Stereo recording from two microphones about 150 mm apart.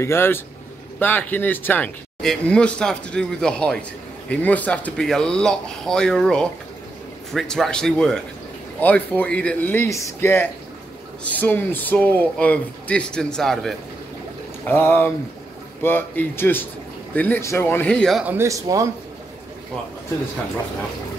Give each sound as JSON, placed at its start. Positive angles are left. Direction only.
{"t": 0.0, "sound": "speech", "side_deg": 15}
{"t": 14.7, "sound": "speech", "side_deg": 15}
{"t": 17.9, "sound": "speech", "side_deg": 0}
{"t": 18.2, "sound": "speech", "side_deg": -15}